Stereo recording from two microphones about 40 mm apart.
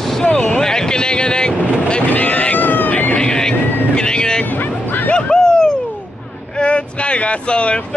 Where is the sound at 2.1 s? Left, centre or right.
Left.